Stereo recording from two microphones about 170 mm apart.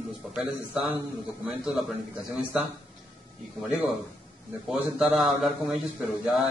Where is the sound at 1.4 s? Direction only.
5° right (ahead or behind).